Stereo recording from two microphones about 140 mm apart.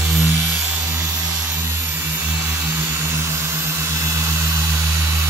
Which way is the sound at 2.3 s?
15° right (ahead or behind).